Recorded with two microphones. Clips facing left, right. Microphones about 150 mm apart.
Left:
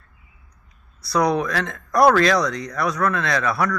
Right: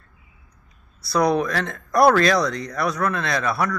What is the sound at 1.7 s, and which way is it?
Speech, 30° right (ahead or behind).